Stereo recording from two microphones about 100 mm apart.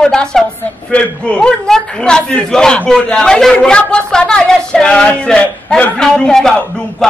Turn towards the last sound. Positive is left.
turn(degrees=5)  # may be behind; listen again after turning